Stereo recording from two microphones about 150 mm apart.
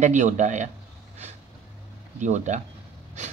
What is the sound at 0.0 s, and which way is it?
Speech, 55° right (ahead or behind).